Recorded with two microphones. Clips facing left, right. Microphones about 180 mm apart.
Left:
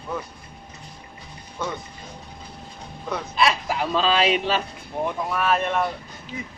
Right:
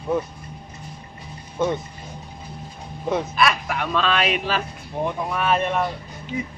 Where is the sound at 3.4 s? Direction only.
25° left (ahead or behind).